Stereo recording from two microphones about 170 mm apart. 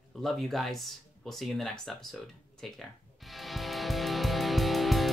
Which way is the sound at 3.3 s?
Centre (ahead or behind).